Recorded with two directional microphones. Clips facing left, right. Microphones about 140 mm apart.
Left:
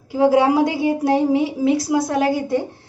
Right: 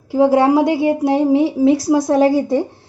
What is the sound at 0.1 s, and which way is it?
A woman's voice, 30° right (ahead or behind).